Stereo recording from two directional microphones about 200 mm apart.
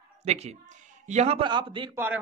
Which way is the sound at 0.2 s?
35° right (ahead or behind).